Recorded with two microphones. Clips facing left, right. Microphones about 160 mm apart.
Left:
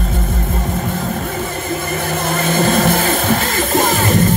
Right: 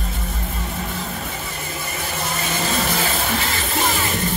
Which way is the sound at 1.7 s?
50° left (ahead or behind).